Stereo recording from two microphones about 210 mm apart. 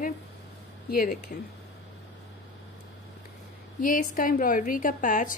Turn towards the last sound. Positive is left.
turn(degrees=40)  # may be behind; listen again after turning